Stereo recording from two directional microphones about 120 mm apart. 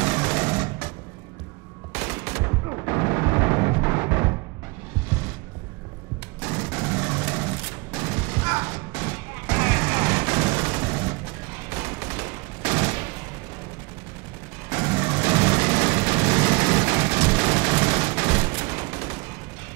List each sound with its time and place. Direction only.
0.0 s music: 10° right (ahead or behind)
1.9 s gunshot: 10° right (ahead or behind)
2.4 s artillery fire: 25° right (ahead or behind)
6.4 s machine gun: 10° right (ahead or behind)
14.7 s a sound: 10° right (ahead or behind)